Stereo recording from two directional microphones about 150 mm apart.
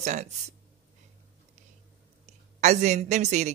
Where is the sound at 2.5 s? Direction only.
55° right (ahead or behind).